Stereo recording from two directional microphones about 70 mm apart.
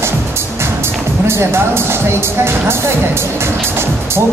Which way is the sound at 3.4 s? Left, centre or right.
Right.